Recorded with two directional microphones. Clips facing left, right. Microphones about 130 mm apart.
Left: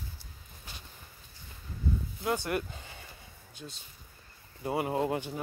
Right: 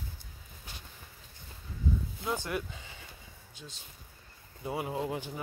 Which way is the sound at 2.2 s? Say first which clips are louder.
Left 3 dB; 60° left (ahead or behind).